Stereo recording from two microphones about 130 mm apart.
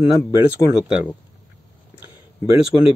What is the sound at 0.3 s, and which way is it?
Speech, 10° right (ahead or behind).